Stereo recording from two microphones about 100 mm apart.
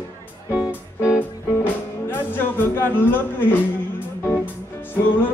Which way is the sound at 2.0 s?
20° left (ahead or behind).